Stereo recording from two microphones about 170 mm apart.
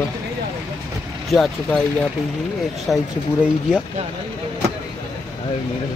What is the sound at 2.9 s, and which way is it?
Speech, 5° left (ahead or behind).